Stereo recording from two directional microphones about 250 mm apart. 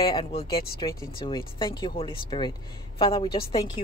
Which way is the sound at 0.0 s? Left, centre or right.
Centre.